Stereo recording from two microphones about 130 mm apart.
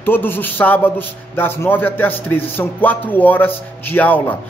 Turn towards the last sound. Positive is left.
turn(degrees=15)  # may be behind; listen again after turning